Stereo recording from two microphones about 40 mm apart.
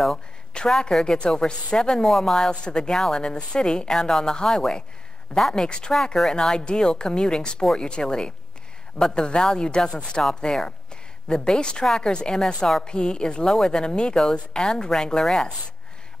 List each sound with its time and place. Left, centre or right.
0.1 s a sound: left
1.0 s a woman's voice: left
2.5 s a woman's voice: left